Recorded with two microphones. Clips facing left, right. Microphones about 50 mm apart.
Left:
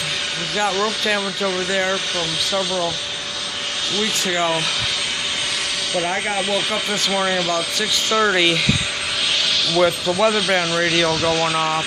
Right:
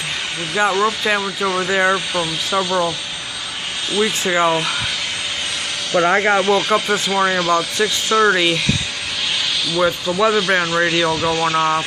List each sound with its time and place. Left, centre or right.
0.6 s speech: centre
4.2 s speech: centre
6.0 s speech: right
6.4 s speech: centre
9.7 s speech: centre